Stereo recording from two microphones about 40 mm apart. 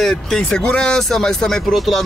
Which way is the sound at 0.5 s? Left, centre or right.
Left.